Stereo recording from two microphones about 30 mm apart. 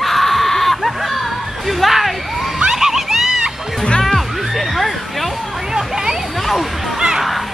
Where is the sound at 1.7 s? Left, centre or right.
Centre.